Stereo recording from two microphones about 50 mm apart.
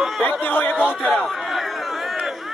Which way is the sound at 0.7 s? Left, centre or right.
Centre.